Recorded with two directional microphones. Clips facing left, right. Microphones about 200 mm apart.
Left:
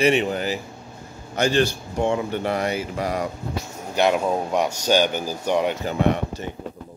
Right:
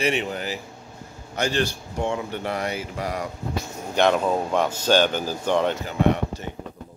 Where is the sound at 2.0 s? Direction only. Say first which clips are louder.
Left 4 dB; 25° left (ahead or behind).